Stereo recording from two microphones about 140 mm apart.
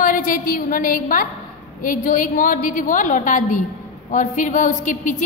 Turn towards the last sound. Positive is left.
turn(degrees=65)  # may be behind; listen again after turning